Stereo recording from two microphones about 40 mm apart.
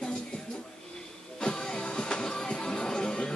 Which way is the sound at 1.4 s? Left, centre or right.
Centre.